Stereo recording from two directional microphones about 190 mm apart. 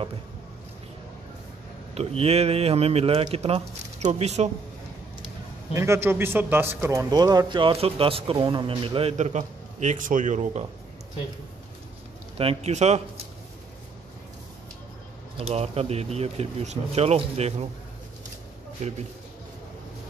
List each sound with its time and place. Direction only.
2.0 s speech: 35° right (ahead or behind)
5.7 s a man's voice: 15° right (ahead or behind); by 10.7 s 35° right (ahead or behind)
12.4 s speech: 30° right (ahead or behind)
15.3 s speech: 30° right (ahead or behind)